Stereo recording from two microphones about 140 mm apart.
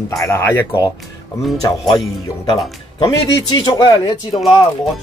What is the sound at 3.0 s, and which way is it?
Speech, 35° left (ahead or behind).